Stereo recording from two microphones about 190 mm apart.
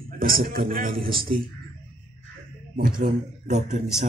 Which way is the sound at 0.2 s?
50° right (ahead or behind).